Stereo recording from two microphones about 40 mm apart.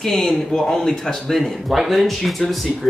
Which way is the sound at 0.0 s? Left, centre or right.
Centre.